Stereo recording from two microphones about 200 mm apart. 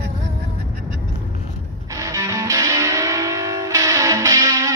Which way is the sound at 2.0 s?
15° right (ahead or behind).